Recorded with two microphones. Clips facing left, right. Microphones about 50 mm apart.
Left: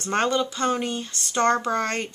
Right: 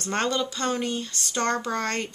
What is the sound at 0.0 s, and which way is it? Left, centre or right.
Speech, centre.